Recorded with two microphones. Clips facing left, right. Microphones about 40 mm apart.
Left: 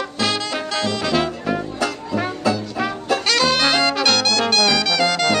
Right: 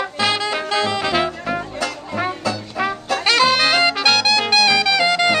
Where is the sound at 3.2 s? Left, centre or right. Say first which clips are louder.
Right 4 dB; centre.